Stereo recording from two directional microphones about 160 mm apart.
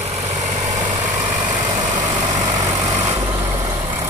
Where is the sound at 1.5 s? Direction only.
50° right (ahead or behind).